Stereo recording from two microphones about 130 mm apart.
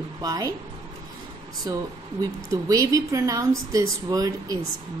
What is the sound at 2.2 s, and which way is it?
A woman's voice, 25° right (ahead or behind).